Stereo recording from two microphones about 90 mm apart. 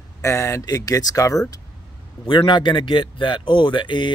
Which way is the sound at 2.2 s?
60° left (ahead or behind).